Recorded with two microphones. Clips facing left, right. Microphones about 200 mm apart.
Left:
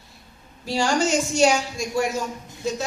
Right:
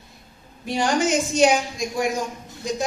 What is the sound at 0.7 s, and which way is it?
A woman's voice, 20° right (ahead or behind).